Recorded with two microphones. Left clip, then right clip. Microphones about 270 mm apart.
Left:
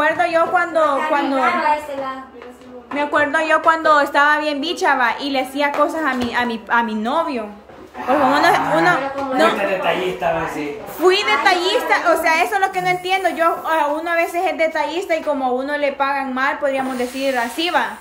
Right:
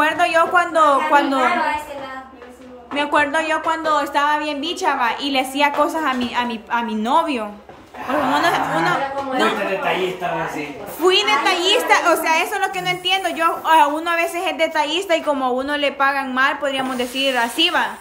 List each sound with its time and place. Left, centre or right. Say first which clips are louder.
0.0 s a woman's voice: even; centre
3.0 s a woman's voice: even; centre
11.0 s a woman's voice: even; centre